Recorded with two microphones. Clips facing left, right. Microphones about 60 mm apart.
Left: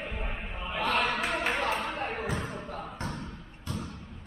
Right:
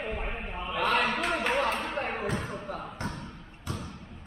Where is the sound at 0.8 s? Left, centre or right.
Right.